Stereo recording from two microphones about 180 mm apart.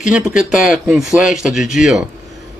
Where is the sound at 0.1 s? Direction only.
5° right (ahead or behind).